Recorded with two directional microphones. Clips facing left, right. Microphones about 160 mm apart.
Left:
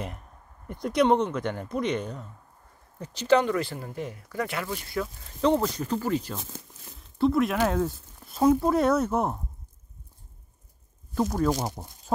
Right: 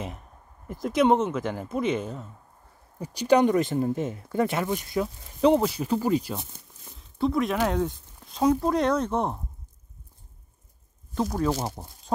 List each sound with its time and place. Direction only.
0.7 s speech: centre (ahead or behind)
7.0 s speech: centre (ahead or behind)
11.1 s speech: centre (ahead or behind)